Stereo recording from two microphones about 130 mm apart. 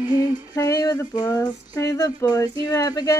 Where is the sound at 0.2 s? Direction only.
25° left (ahead or behind).